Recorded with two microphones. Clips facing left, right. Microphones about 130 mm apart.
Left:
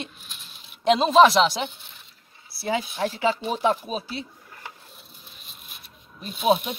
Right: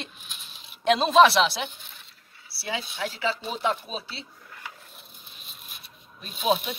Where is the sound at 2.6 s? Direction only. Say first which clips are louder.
Left 6 dB; 40° left (ahead or behind).